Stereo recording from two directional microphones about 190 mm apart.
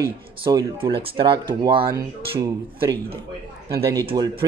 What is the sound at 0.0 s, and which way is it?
Speech, 20° right (ahead or behind).